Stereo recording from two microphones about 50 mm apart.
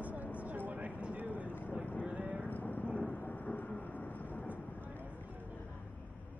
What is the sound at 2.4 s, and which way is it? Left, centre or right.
Vehicle, left.